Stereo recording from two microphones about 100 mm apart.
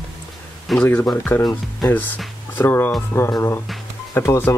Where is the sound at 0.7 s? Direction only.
Centre (ahead or behind).